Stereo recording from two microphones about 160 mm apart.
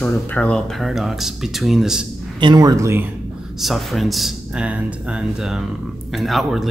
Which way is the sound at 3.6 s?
Centre (ahead or behind).